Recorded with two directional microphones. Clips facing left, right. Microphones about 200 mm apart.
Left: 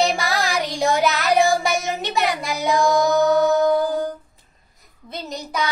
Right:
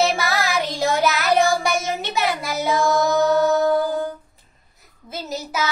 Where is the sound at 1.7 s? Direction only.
15° left (ahead or behind).